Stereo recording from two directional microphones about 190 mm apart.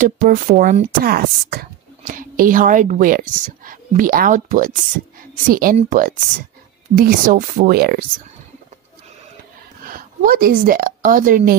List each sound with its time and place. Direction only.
0.0 s a woman's voice: 45° right (ahead or behind)
9.8 s a woman's voice: 50° right (ahead or behind)